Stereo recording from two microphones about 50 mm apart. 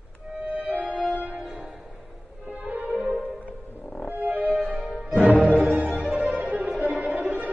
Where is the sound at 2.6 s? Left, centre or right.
Right.